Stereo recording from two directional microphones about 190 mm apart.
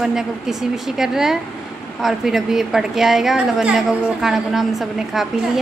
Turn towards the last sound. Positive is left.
turn(degrees=0)  # may be behind; listen again after turning